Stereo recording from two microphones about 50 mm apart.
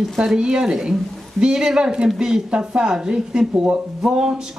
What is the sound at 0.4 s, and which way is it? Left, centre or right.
Speech, centre.